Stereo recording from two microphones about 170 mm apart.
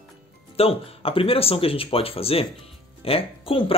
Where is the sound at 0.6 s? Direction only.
35° left (ahead or behind).